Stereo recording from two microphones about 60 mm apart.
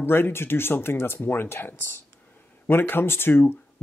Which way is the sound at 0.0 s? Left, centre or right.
Left.